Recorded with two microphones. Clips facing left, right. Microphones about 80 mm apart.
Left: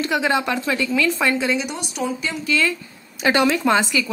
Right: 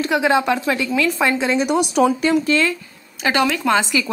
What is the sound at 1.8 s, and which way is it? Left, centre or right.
Speech, right.